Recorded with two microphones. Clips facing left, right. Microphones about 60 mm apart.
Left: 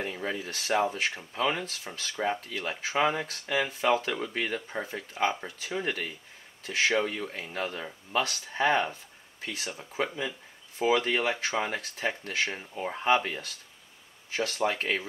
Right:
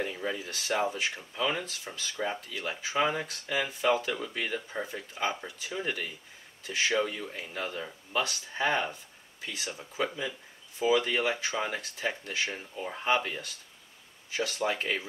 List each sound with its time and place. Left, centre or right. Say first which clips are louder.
0.0 s speech: even; left